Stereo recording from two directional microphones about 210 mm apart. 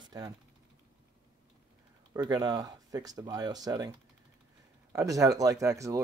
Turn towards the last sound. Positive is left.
turn(degrees=-15)  # may be behind; listen again after turning